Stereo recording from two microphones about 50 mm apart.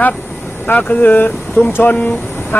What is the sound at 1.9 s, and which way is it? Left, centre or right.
Speech, left.